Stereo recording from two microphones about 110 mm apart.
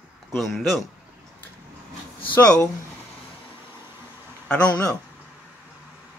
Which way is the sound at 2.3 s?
10° left (ahead or behind).